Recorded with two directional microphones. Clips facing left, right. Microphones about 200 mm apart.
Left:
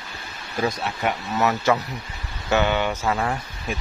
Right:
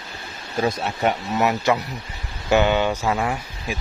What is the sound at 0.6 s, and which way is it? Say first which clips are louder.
Speech: right 2 dB; 30° right (ahead or behind).